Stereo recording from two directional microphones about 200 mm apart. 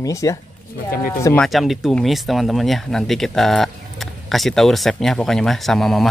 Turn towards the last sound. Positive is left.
turn(degrees=0)  # may be behind; listen again after turning